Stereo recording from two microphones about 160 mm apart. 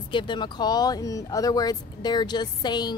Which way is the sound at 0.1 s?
30° left (ahead or behind).